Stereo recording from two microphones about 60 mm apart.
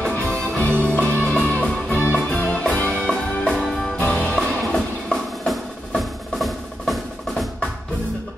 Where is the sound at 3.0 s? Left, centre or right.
Centre.